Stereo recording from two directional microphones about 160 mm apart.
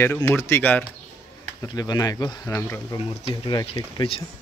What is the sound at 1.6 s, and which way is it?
Speech, 25° left (ahead or behind).